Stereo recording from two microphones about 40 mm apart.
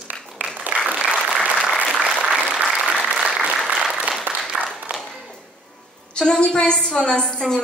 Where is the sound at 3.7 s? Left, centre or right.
Centre.